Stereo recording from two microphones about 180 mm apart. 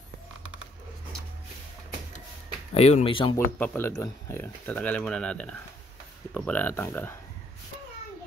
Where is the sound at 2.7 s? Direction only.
35° left (ahead or behind).